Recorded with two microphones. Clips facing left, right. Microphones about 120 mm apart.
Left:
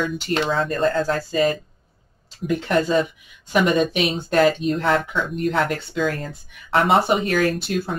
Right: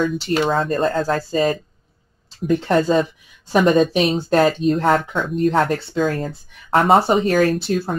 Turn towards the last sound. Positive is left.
turn(degrees=-35)  # may be behind; listen again after turning